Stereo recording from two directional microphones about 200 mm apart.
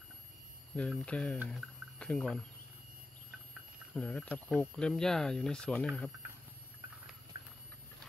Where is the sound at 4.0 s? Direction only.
10° left (ahead or behind).